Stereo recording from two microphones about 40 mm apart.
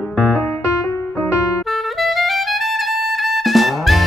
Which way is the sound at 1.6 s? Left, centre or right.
Centre.